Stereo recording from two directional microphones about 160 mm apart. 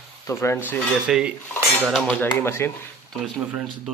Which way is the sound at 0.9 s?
5° right (ahead or behind).